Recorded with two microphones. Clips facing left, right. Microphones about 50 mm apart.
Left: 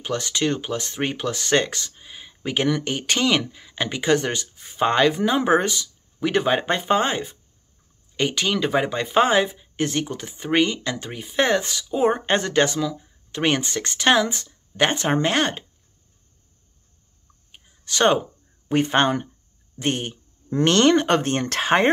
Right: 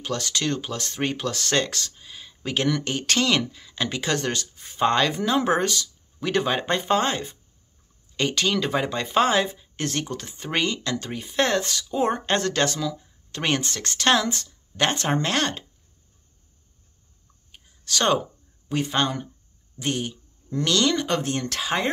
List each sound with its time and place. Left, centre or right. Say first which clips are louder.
0.0 s speech: left 3 dB; centre
17.5 s a sound: right 2 dB; centre
17.9 s speech: left 3 dB; left
18.7 s speech: left 5 dB; left